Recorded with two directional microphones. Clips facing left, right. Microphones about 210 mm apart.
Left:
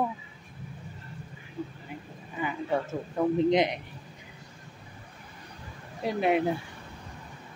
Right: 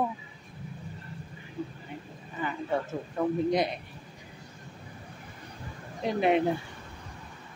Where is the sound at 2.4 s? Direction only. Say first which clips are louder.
Left 1 dB; 10° left (ahead or behind).